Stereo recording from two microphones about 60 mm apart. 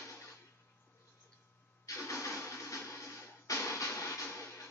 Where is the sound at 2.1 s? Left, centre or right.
Left.